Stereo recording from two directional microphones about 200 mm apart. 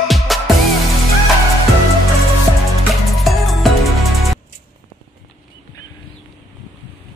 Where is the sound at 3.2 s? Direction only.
Centre (ahead or behind).